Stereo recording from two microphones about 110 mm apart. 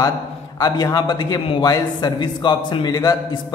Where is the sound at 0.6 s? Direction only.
35° left (ahead or behind).